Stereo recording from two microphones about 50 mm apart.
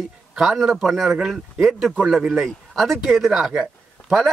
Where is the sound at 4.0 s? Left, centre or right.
Left.